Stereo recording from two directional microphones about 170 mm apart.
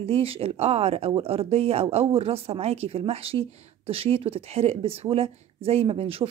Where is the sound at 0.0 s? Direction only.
35° right (ahead or behind).